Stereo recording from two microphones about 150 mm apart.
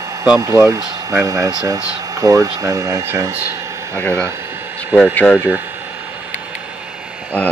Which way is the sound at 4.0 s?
10° left (ahead or behind).